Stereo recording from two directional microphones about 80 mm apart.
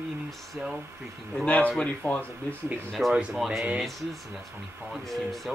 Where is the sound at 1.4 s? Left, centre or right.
Centre.